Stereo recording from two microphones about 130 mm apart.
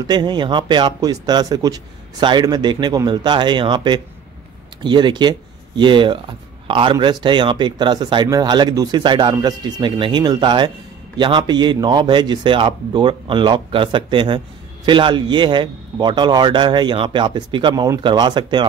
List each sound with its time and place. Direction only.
0.0 s a man's voice: 35° right (ahead or behind)